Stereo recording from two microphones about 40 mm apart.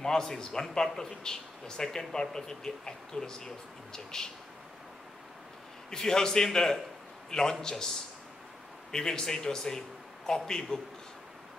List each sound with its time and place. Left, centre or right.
0.0 s speech: centre
5.9 s a man's voice: centre
8.9 s a man's voice: centre